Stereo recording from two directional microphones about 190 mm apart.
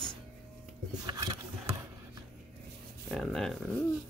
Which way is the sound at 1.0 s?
20° right (ahead or behind).